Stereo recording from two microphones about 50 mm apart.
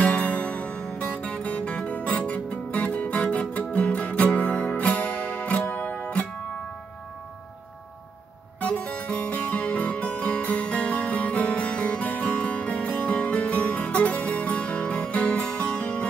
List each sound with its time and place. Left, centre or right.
0.0 s music: left
8.5 s music: left